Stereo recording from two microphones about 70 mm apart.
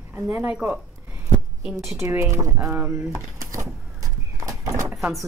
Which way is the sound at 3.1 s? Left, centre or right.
Right.